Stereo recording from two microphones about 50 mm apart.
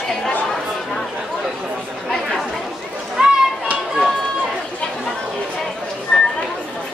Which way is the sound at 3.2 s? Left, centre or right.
Centre.